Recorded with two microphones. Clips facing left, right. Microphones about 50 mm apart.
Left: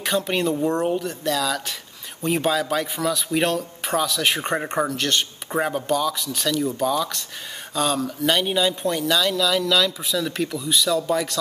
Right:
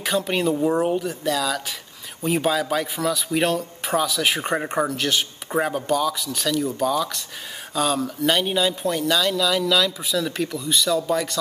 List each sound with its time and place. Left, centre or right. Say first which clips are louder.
0.0 s a man's voice: even; centre